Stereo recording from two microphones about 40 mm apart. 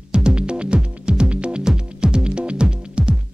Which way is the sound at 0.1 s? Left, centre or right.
Right.